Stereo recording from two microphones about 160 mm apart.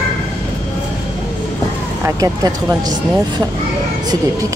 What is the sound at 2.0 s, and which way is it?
Speech, 20° right (ahead or behind).